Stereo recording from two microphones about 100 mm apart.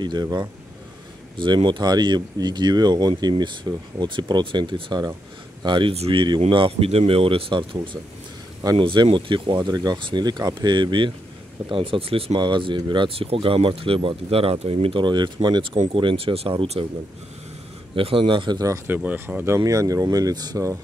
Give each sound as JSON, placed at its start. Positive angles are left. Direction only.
{"t": 0.0, "sound": "speech", "side_deg": -45}
{"t": 1.3, "sound": "speech", "side_deg": -55}
{"t": 5.9, "sound": "speech", "side_deg": -75}
{"t": 11.7, "sound": "speech", "side_deg": -65}
{"t": 12.4, "sound": "speech", "side_deg": -55}
{"t": 13.1, "sound": "speech", "side_deg": -70}
{"t": 15.9, "sound": "speech", "side_deg": -60}
{"t": 17.9, "sound": "speech", "side_deg": -60}
{"t": 18.9, "sound": "speech", "side_deg": -20}